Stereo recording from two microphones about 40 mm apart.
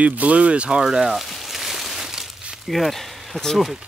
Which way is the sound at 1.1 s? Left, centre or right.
Centre.